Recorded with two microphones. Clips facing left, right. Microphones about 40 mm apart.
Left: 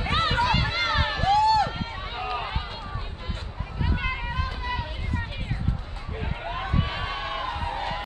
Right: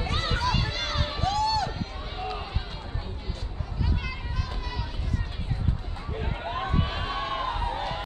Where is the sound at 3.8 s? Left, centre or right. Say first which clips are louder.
Left 5 dB; left.